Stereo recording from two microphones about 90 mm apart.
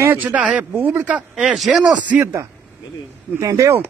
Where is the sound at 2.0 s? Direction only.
30° right (ahead or behind).